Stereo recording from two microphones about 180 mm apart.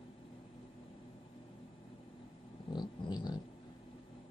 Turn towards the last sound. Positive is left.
turn(degrees=25)  # may be behind; listen again after turning